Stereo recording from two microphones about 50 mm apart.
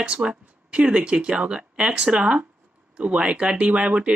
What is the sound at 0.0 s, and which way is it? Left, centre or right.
Speech, right.